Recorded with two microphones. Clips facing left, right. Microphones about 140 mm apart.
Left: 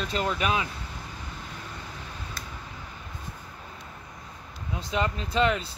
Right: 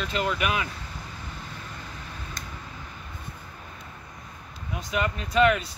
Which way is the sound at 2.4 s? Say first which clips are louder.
Right 1 dB; 5° left (ahead or behind).